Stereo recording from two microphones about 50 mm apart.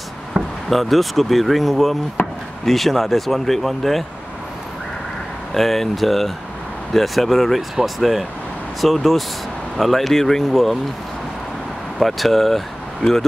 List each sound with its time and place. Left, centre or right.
0.7 s speech: centre
2.2 s chop: left
2.6 s speech: centre
5.5 s speech: centre
12.0 s speech: centre